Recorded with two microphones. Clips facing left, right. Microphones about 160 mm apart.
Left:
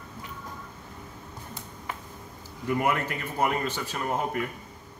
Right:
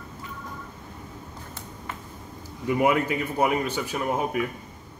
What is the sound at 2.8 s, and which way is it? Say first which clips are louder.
Speech: right 8 dB; 15° right (ahead or behind).